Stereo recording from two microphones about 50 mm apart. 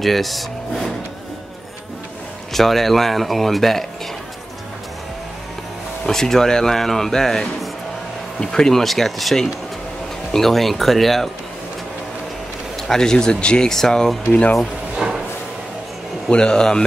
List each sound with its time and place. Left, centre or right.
0.0 s speech: centre
2.5 s speech: centre
6.0 s speech: centre
12.8 s speech: centre
14.3 s speech: left
15.0 s a sound: centre
16.3 s speech: centre